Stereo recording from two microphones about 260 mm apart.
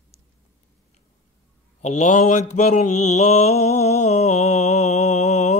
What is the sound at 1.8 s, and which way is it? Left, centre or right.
Mantra, left.